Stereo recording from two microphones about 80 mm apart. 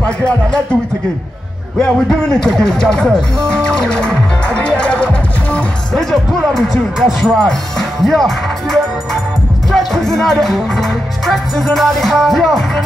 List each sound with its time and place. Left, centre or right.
1.8 s music: centre
6.5 s music: centre